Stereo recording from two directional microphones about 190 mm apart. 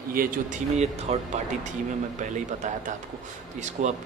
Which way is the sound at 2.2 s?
40° right (ahead or behind).